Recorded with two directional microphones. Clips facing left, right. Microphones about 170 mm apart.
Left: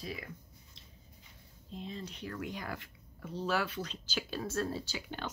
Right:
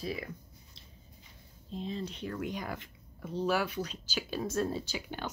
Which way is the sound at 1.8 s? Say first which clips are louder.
Right 5 dB; 25° right (ahead or behind).